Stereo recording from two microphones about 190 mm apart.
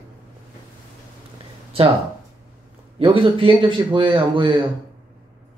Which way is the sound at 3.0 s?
25° right (ahead or behind).